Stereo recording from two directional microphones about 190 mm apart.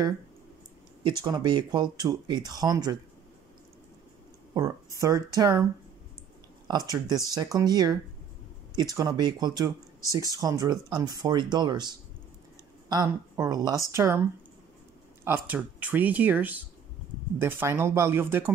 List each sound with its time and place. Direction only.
1.2 s speech: 20° right (ahead or behind)
4.6 s speech: 15° right (ahead or behind)
6.9 s speech: 20° right (ahead or behind)
12.9 s speech: 15° right (ahead or behind)
15.2 s speech: 10° right (ahead or behind)